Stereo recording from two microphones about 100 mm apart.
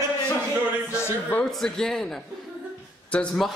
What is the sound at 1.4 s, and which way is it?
Speech, 5° left (ahead or behind).